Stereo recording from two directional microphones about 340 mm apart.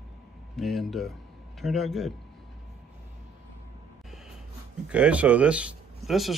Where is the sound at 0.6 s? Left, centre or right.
Centre.